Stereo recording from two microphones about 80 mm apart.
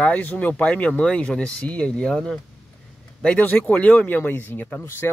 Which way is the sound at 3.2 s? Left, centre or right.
Centre.